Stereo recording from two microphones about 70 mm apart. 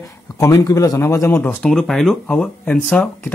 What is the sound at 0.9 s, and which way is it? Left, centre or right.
Speech, left.